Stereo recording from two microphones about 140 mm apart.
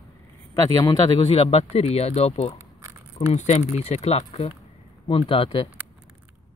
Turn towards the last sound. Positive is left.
turn(degrees=40)  # may be behind; listen again after turning